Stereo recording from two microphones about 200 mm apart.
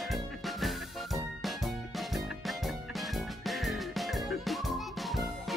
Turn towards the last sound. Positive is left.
turn(degrees=0)  # may be behind; listen again after turning